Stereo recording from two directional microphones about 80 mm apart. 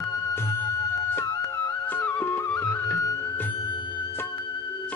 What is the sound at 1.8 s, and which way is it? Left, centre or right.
Music, left.